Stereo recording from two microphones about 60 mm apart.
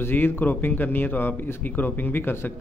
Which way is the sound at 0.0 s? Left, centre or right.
Left.